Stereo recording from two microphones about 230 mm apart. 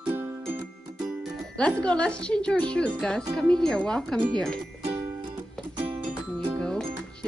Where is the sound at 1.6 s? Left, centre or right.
Centre.